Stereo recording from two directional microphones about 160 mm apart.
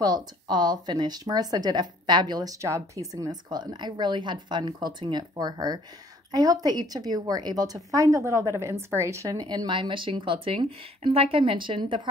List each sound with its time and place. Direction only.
0.0 s speech: 25° right (ahead or behind)